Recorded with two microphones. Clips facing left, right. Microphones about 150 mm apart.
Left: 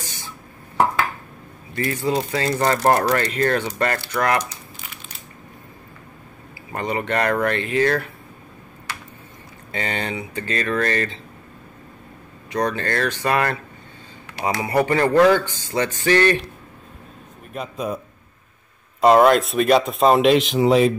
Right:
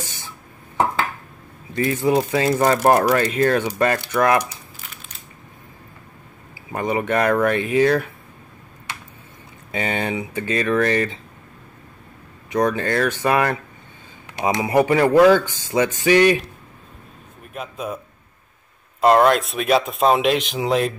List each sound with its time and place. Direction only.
1.8 s speech: 15° right (ahead or behind)
6.7 s speech: 10° right (ahead or behind)
9.7 s speech: 15° right (ahead or behind)
12.5 s speech: 10° right (ahead or behind)
17.5 s speech: centre (ahead or behind)